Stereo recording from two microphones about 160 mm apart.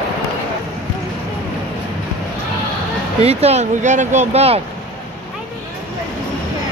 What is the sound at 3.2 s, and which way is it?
Speech, 40° right (ahead or behind).